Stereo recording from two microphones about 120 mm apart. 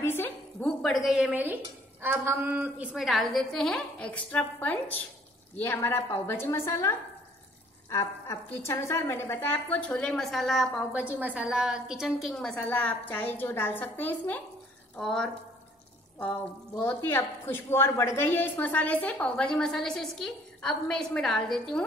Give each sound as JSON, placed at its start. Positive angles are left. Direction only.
{"t": 0.0, "sound": "a sound", "side_deg": 20}
{"t": 0.8, "sound": "a woman's voice", "side_deg": 0}
{"t": 1.3, "sound": "a woman's voice", "side_deg": -15}
{"t": 10.9, "sound": "a woman's voice", "side_deg": -10}
{"t": 12.5, "sound": "a woman's voice", "side_deg": 15}